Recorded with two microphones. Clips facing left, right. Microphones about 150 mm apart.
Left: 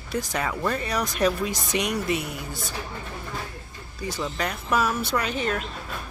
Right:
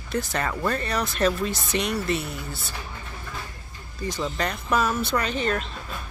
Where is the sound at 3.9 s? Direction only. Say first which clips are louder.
Right 1 dB; 10° left (ahead or behind).